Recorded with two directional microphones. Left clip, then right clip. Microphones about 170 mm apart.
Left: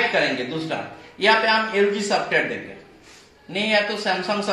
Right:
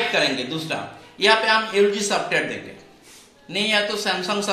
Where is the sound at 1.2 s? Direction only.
35° left (ahead or behind).